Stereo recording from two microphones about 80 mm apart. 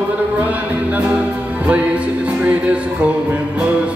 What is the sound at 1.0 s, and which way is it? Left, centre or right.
Music, centre.